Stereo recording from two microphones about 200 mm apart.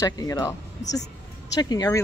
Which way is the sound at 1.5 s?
20° left (ahead or behind).